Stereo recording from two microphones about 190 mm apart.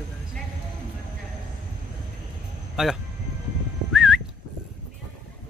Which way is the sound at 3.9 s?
Centre (ahead or behind).